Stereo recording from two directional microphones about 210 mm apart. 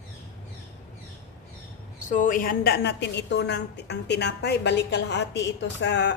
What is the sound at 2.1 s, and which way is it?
A woman's voice, 40° left (ahead or behind).